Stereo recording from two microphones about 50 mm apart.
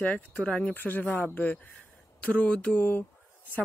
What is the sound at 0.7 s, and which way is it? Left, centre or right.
Speech, left.